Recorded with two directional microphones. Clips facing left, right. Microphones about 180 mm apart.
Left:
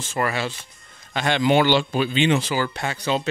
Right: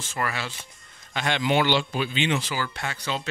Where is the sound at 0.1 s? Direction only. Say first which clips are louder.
Left 6 dB; 25° left (ahead or behind).